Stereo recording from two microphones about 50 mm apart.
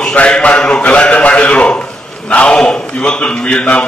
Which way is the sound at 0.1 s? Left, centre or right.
Left.